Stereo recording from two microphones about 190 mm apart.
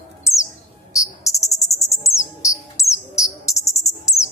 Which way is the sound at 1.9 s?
15° left (ahead or behind).